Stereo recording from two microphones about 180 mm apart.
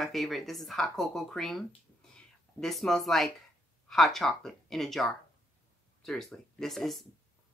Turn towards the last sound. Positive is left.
turn(degrees=0)  # may be behind; listen again after turning